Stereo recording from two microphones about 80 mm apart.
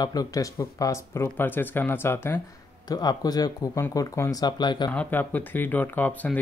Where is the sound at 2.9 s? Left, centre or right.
Left.